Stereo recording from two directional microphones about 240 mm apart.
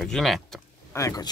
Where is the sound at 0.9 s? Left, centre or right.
Centre.